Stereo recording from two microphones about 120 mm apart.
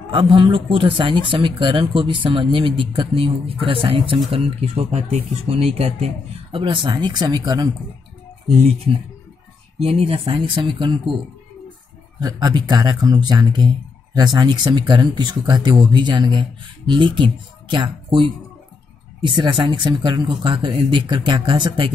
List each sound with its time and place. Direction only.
0.0 s speech: 45° right (ahead or behind)
9.8 s speech: 55° right (ahead or behind)
10.3 s speech: 40° right (ahead or behind)
12.2 s speech: 35° right (ahead or behind)
19.2 s speech: 40° right (ahead or behind)